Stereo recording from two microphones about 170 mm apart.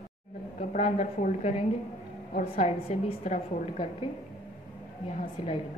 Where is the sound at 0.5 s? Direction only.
45° left (ahead or behind).